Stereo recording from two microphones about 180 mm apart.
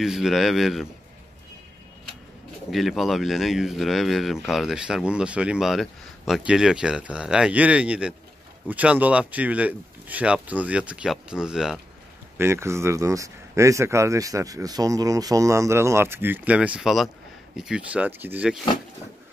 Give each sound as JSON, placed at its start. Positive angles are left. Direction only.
{"t": 0.0, "sound": "speech", "side_deg": 0}
{"t": 2.7, "sound": "speech", "side_deg": 0}
{"t": 12.4, "sound": "speech", "side_deg": -15}